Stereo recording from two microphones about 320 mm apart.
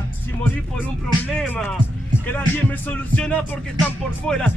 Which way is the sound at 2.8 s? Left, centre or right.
Centre.